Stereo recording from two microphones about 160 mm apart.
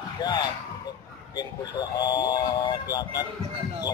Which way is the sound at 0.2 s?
25° left (ahead or behind).